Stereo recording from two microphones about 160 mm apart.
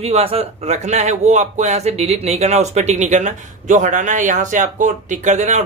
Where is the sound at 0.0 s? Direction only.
40° right (ahead or behind).